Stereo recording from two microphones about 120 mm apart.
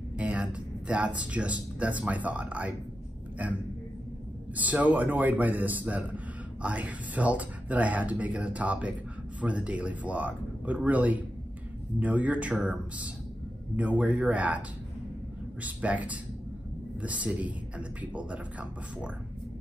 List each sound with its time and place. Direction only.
0.2 s a man's voice: 10° right (ahead or behind)
15.6 s a man's voice: 10° right (ahead or behind)